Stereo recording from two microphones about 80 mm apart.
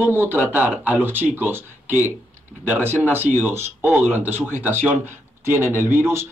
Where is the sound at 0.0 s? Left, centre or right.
Right.